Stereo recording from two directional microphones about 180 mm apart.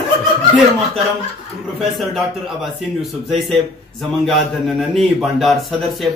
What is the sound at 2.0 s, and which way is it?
A man's voice, centre (ahead or behind).